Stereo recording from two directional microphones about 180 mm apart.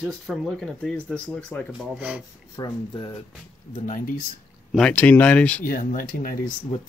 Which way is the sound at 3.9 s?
50° left (ahead or behind).